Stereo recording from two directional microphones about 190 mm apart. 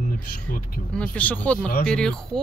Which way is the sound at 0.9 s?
10° left (ahead or behind).